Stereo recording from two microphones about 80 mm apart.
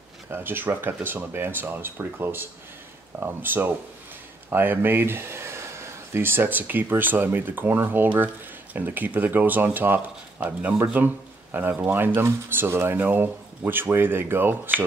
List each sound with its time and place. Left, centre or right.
0.3 s speech: right
11.8 s speech: right